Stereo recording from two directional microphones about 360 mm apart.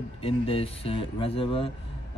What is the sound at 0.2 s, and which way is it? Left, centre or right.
Speech, centre.